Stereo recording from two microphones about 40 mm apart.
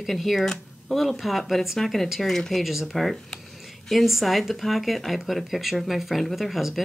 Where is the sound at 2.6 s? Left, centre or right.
Centre.